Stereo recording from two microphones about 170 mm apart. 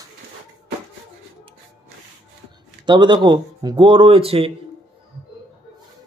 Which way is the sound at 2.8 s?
25° right (ahead or behind).